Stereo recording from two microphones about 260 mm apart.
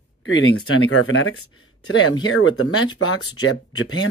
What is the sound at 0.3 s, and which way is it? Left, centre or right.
Speech, left.